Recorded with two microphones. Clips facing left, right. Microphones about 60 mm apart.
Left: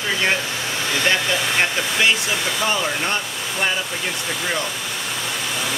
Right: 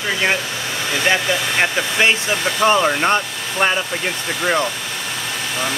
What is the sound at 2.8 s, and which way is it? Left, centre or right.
Speech, right.